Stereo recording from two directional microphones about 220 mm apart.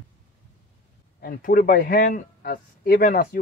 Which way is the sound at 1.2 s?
40° left (ahead or behind).